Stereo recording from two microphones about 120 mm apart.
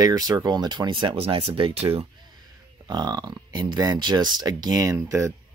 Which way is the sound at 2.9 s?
35° right (ahead or behind).